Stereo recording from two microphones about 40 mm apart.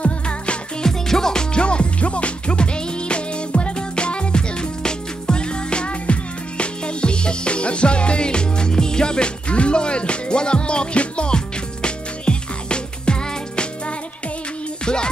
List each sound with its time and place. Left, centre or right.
0.8 s music: centre